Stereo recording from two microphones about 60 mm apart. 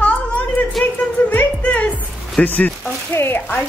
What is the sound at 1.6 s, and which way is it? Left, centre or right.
Music, left.